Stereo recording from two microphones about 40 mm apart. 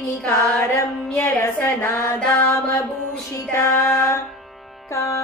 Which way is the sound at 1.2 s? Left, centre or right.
Left.